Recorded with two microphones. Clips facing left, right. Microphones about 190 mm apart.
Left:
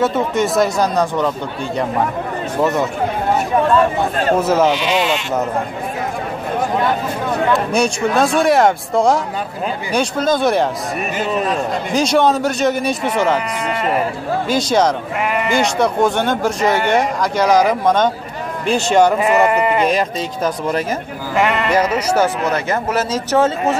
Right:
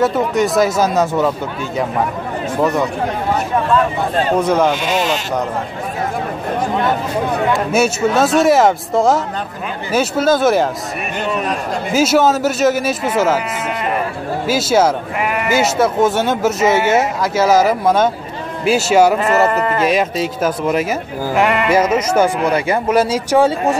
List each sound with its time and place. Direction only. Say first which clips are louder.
0.0 s speech: right 2 dB; centre (ahead or behind)
2.6 s speech: right 1 dB; centre (ahead or behind)
4.4 s speech: even; 5° left (ahead or behind)
4.7 s speech: even; 45° right (ahead or behind)
7.5 s speech: right 1 dB; 5° right (ahead or behind)
19.5 s speech: left 2 dB; 10° left (ahead or behind)
19.8 s speech: right 2 dB; 5° right (ahead or behind)